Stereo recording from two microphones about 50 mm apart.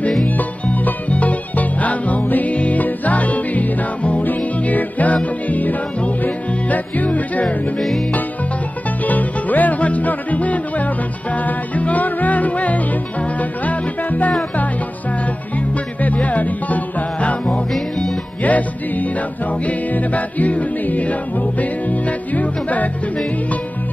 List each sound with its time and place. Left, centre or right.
0.3 s music: left
9.0 s music: left
15.5 s music: left
17.5 s music: centre
18.4 s music: left